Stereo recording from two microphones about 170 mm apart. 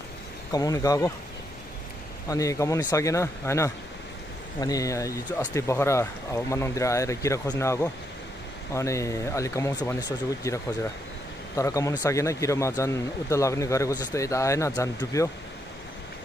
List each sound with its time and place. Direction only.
0.5 s speech: 20° left (ahead or behind)
2.2 s speech: 20° left (ahead or behind)